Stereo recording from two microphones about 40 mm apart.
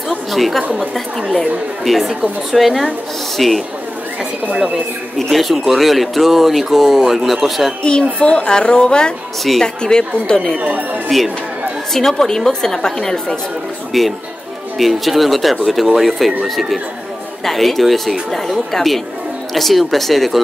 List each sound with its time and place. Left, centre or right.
0.3 s speech: centre
1.9 s speech: centre
5.3 s speech: centre
8.2 s a woman's voice: left
11.1 s a woman's voice: centre
13.9 s a woman's voice: centre